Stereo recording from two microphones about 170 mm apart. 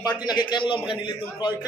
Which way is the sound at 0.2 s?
25° left (ahead or behind).